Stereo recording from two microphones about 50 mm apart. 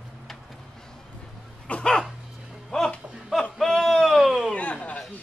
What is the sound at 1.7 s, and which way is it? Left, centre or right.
Dog, left.